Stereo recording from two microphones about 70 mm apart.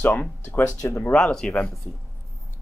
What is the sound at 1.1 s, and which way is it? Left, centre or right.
Speech, centre.